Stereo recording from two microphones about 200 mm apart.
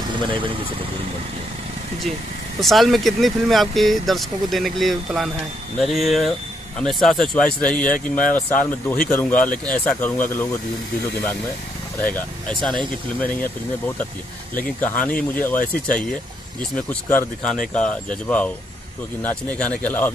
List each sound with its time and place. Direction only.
0.2 s speech: 25° right (ahead or behind)
2.6 s speech: centre (ahead or behind)
12.0 s speech: 5° left (ahead or behind)
14.5 s speech: 10° left (ahead or behind)